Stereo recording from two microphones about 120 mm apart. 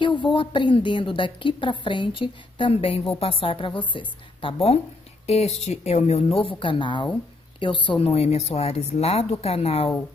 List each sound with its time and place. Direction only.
0.0 s a woman's voice: 40° left (ahead or behind)
5.2 s speech: 60° left (ahead or behind)